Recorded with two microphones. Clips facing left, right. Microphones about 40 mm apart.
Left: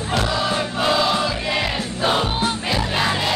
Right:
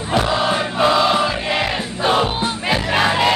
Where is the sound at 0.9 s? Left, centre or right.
Right.